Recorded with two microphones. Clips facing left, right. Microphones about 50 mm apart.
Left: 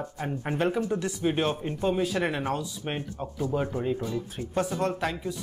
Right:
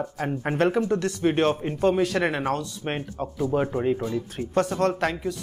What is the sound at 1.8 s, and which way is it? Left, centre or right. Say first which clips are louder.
Speech: right 5 dB; right.